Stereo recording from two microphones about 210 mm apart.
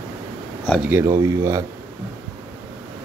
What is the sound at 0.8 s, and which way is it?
Speech, 10° right (ahead or behind).